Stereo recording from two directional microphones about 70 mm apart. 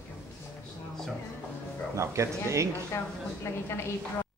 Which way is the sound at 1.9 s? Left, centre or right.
Right.